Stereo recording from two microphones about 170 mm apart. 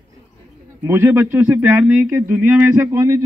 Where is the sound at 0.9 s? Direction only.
15° right (ahead or behind).